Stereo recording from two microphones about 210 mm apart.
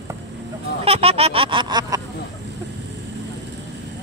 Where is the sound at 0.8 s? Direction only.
30° right (ahead or behind).